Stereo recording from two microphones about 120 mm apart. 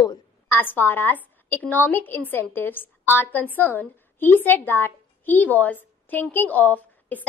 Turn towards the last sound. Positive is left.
turn(degrees=15)  # may be behind; listen again after turning